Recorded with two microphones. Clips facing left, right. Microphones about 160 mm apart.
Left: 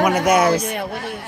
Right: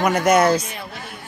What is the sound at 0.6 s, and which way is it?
Speech, 60° left (ahead or behind).